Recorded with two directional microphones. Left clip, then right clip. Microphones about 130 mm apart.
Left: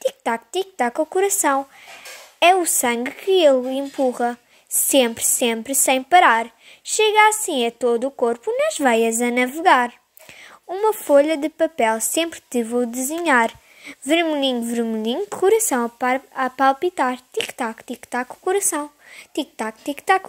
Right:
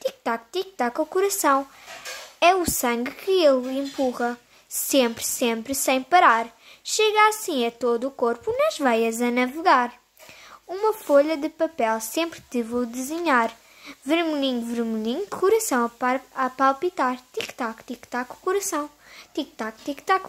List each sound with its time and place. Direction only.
0.0 s a woman's voice: 25° left (ahead or behind)